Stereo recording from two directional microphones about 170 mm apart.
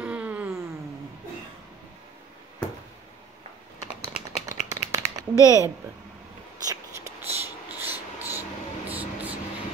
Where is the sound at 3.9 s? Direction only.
40° left (ahead or behind).